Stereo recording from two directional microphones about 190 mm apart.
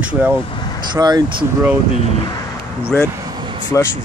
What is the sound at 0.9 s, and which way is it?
Speech, 25° right (ahead or behind).